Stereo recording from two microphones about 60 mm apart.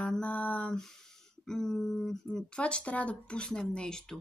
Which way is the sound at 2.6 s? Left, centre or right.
Centre.